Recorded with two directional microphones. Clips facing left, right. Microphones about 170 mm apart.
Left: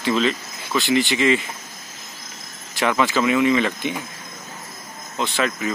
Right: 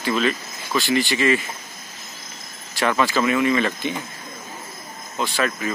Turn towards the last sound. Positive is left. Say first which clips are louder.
# left 1 dB
turn(degrees=20)  # may be behind; listen again after turning